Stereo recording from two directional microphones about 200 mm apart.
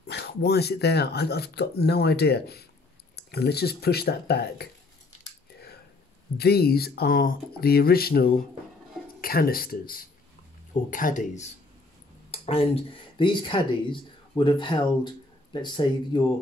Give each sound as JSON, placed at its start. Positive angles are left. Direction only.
{"t": 0.1, "sound": "speech", "side_deg": 55}
{"t": 6.3, "sound": "speech", "side_deg": 50}
{"t": 12.3, "sound": "speech", "side_deg": 30}